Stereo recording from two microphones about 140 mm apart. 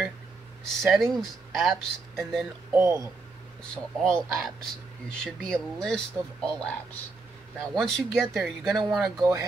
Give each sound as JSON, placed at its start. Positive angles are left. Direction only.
{"t": 0.8, "sound": "speech", "side_deg": 0}
{"t": 2.7, "sound": "speech", "side_deg": -15}
{"t": 3.7, "sound": "speech", "side_deg": 5}